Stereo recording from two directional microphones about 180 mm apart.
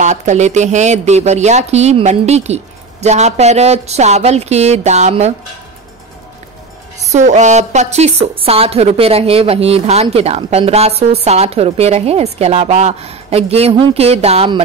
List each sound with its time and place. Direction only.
0.0 s speech: 40° right (ahead or behind)
7.0 s speech: 40° right (ahead or behind)